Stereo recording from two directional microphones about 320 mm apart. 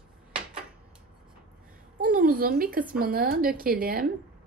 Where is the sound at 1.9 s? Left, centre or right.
Right.